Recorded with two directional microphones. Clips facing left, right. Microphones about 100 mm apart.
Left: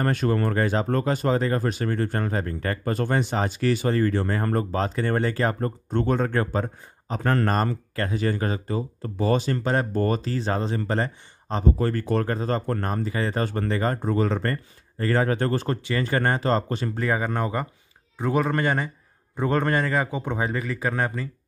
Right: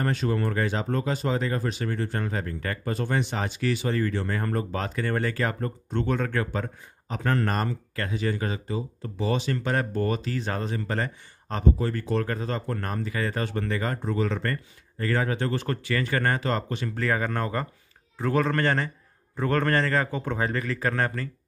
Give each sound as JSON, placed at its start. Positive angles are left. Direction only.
{"t": 0.0, "sound": "speech", "side_deg": 50}
{"t": 11.8, "sound": "speech", "side_deg": 45}
{"t": 12.8, "sound": "speech", "side_deg": 30}
{"t": 16.9, "sound": "a man's voice", "side_deg": 20}